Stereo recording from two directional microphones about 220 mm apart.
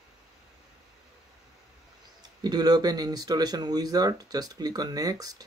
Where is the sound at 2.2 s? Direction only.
20° right (ahead or behind).